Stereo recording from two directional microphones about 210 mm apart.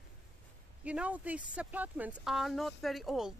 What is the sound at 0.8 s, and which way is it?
Speech, 5° right (ahead or behind).